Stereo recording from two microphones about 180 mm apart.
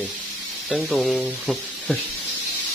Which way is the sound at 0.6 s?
Centre (ahead or behind).